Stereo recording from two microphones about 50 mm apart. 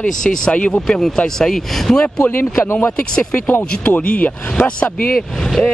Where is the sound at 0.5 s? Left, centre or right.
Left.